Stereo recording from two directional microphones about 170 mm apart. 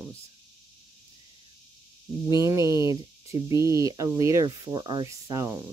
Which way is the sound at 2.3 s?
20° right (ahead or behind).